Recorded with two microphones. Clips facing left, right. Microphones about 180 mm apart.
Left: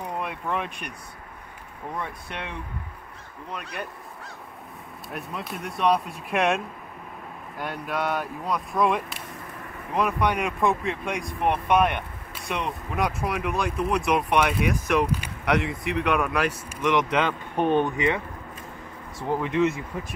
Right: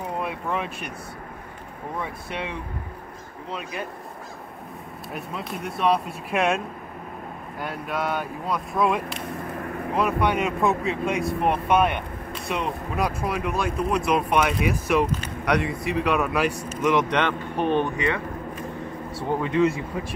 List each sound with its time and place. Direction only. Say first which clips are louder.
0.2 s speech: right 1 dB; centre (ahead or behind)
2.0 s speech: right 3 dB; 10° right (ahead or behind)
5.1 s speech: right 1 dB; centre (ahead or behind)
15.0 s speech: even; 10° left (ahead or behind)
15.4 s speech: right 1 dB; centre (ahead or behind)
17.6 s speech: left 1 dB; 20° left (ahead or behind)
19.1 s speech: right 1 dB; centre (ahead or behind)